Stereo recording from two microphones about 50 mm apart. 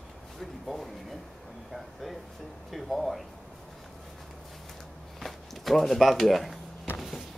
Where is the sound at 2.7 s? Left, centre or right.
Centre.